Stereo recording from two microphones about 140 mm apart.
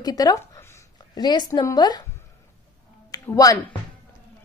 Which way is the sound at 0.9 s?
30° left (ahead or behind).